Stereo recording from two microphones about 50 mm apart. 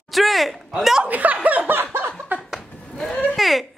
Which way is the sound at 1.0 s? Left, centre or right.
Right.